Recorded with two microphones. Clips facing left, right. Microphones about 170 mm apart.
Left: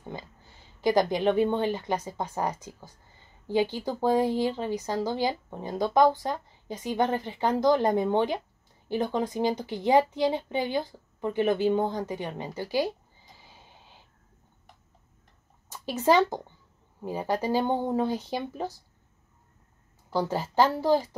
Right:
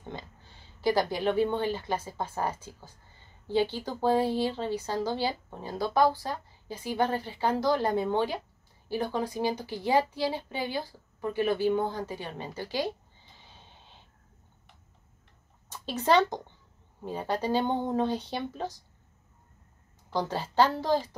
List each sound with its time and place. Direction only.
0.1 s a woman's voice: 10° left (ahead or behind)
13.4 s snort: 10° left (ahead or behind)
15.7 s speech: 15° left (ahead or behind)
20.1 s speech: 10° left (ahead or behind)